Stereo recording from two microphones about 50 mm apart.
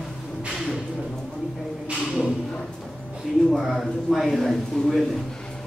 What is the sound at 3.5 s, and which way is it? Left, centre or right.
Speech, centre.